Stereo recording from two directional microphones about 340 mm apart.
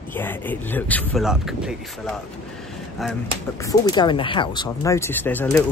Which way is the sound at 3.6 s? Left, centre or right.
Centre.